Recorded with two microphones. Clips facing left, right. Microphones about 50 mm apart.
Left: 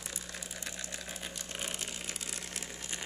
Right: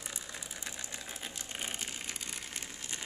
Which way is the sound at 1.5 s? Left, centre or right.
Centre.